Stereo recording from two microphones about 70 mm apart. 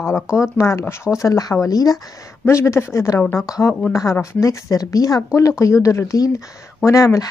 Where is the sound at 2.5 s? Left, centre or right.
Left.